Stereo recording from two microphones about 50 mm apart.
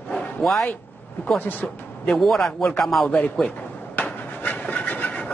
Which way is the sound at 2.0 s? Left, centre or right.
Centre.